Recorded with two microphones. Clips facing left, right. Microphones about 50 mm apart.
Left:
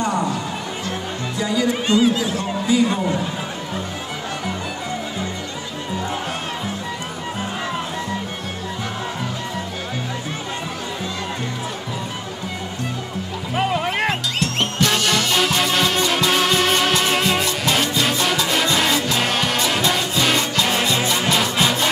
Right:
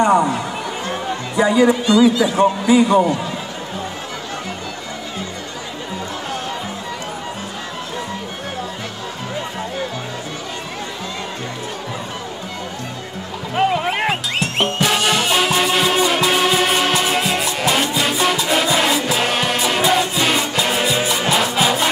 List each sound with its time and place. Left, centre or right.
0.0 s music: right
1.3 s speech: right
1.8 s speech: left
2.3 s a man's voice: right
13.8 s music: centre